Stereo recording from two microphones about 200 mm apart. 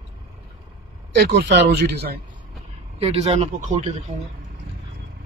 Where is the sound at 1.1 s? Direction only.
55° right (ahead or behind).